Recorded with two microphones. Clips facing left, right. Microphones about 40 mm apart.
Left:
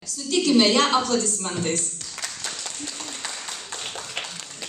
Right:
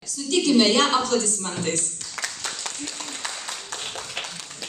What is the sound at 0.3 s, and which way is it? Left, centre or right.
Speech, centre.